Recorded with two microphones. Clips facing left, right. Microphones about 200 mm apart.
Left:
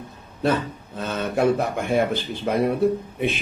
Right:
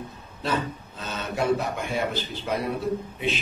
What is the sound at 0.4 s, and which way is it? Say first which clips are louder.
A man's voice: left 5 dB; 55° left (ahead or behind).